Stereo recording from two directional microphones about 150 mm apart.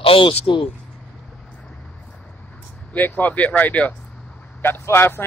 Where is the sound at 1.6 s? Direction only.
5° left (ahead or behind).